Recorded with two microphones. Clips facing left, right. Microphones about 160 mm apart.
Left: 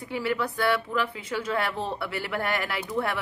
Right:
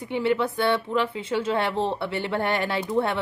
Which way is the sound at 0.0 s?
25° right (ahead or behind).